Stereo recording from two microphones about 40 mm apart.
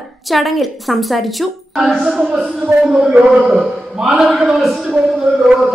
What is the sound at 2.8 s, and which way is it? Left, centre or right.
Speech, centre.